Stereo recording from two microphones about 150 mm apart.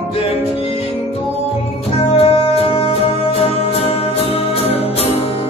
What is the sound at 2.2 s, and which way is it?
Music, 40° left (ahead or behind).